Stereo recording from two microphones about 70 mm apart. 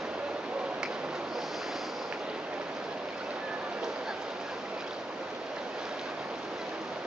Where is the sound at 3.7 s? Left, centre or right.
Centre.